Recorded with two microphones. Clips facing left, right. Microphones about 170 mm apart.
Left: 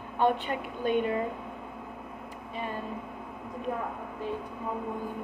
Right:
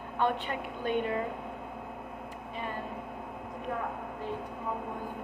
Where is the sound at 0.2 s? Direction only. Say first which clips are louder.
Left 4 dB; 15° left (ahead or behind).